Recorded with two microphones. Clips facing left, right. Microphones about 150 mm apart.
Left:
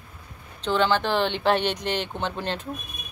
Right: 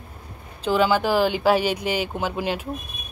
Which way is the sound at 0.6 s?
5° right (ahead or behind).